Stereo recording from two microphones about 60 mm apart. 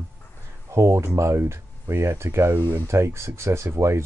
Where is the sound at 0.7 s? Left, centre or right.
Right.